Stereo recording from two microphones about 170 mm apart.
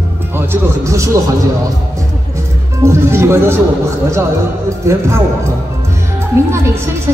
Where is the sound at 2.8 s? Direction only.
15° right (ahead or behind).